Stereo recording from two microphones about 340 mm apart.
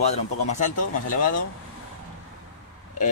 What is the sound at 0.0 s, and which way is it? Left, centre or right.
Speech, left.